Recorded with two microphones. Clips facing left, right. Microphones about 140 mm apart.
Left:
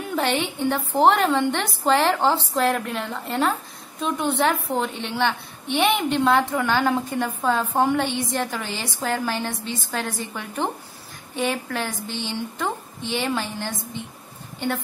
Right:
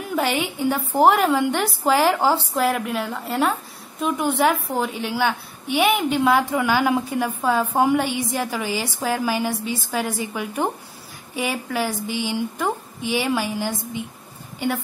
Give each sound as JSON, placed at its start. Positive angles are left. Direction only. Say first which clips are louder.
{"t": 0.0, "sound": "a woman's voice", "louder": "right 1 dB", "side_deg": -5}